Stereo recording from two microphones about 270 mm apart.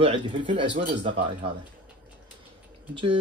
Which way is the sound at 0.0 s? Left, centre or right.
Centre.